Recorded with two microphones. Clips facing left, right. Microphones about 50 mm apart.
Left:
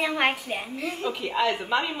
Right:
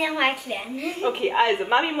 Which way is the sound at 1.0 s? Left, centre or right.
Right.